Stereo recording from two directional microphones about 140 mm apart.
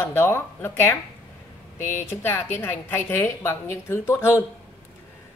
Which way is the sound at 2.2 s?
20° left (ahead or behind).